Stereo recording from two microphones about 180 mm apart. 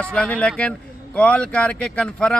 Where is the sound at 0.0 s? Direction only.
5° left (ahead or behind).